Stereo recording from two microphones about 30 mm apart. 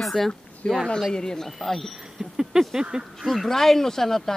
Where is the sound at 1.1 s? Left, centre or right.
Centre.